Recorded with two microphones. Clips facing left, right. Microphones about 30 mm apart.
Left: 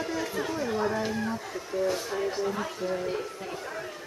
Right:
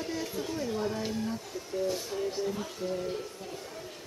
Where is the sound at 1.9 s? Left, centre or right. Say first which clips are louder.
Left 3 dB; left.